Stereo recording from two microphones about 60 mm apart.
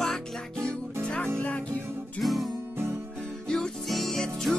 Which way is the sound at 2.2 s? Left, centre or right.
Centre.